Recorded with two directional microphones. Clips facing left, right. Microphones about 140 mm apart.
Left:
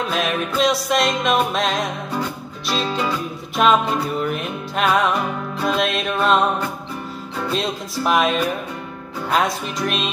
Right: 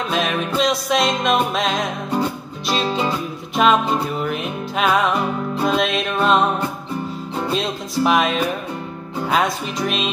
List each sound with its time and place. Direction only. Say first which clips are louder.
0.1 s music: right 1 dB; centre (ahead or behind)
2.9 s music: right 1 dB; 25° right (ahead or behind)
3.5 s music: right 1 dB; centre (ahead or behind)
7.5 s music: right 1 dB; centre (ahead or behind)